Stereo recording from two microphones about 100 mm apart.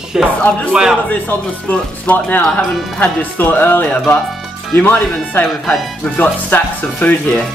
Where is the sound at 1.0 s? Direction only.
15° left (ahead or behind).